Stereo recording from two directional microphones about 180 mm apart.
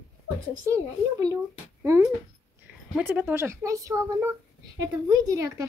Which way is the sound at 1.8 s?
15° right (ahead or behind).